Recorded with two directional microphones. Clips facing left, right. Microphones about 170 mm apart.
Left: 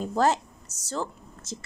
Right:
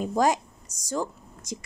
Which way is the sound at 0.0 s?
15° right (ahead or behind).